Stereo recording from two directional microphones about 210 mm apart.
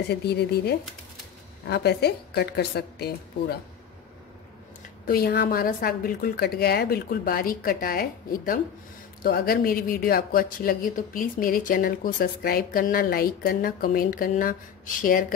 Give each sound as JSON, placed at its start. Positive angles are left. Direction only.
{"t": 0.1, "sound": "speech", "side_deg": 50}
{"t": 5.0, "sound": "speech", "side_deg": 45}